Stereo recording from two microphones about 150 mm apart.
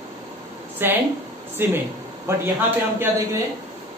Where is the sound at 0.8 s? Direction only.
15° right (ahead or behind).